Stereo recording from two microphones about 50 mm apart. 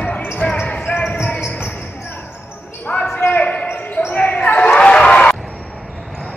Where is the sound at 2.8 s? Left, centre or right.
Left.